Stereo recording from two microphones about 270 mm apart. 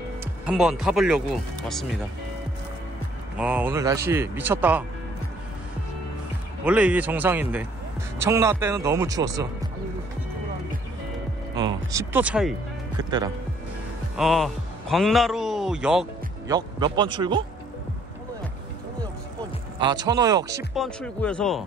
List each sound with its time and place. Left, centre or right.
0.2 s speech: centre
3.3 s a man's voice: centre
6.6 s a man's voice: centre
11.5 s a man's voice: centre
14.1 s speech: centre
16.4 s a man's voice: centre
19.8 s a man's voice: centre
20.7 s a man's voice: centre